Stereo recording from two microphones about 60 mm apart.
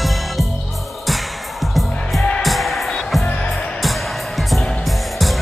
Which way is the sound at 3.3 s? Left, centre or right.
Centre.